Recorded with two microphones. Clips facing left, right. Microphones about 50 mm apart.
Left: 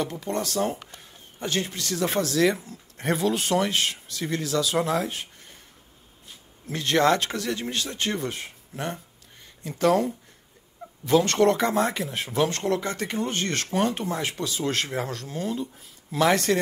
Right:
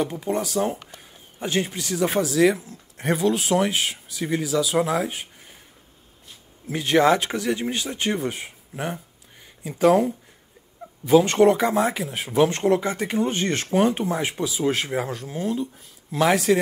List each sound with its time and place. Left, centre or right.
0.0 s a man's voice: centre
6.7 s a man's voice: centre
12.3 s a man's voice: centre